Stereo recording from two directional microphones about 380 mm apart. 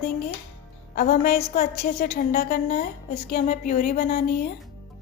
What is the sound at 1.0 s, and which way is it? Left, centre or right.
A woman's voice, left.